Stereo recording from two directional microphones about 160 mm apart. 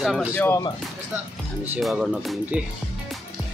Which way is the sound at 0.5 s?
25° left (ahead or behind).